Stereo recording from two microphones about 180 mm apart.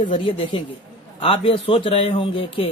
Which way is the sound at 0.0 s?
25° left (ahead or behind).